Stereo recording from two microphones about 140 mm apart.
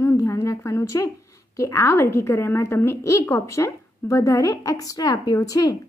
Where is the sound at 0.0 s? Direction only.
20° left (ahead or behind).